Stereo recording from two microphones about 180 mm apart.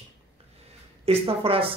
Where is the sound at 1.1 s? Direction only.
30° right (ahead or behind).